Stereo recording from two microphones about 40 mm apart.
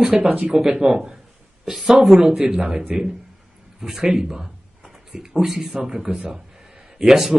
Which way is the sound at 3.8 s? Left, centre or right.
Centre.